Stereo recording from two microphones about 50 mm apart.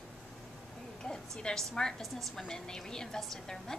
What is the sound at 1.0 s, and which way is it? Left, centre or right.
A woman's voice, centre.